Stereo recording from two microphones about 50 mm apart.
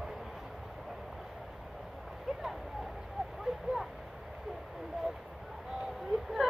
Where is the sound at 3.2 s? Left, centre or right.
Centre.